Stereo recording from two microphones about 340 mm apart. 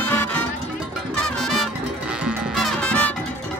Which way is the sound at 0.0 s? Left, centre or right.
Centre.